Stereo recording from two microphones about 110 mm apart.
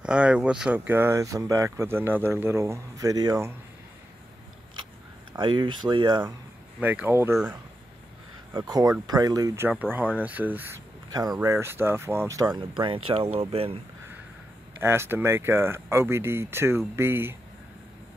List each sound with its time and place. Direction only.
0.0 s speech: 10° right (ahead or behind); by 3.4 s 35° right (ahead or behind)
5.3 s speech: 45° right (ahead or behind)
6.8 s speech: 15° right (ahead or behind)
8.5 s speech: 35° right (ahead or behind)
9.6 s speech: 15° right (ahead or behind)
11.1 s speech: 35° right (ahead or behind)
11.4 s speech: 20° right (ahead or behind)
12.7 s speech: 50° right (ahead or behind)
14.8 s speech: 20° right (ahead or behind)